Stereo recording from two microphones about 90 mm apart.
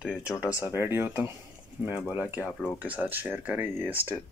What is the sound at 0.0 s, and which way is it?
Speech, 10° right (ahead or behind).